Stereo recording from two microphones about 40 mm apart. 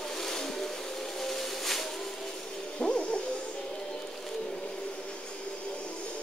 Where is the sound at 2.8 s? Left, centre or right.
Left.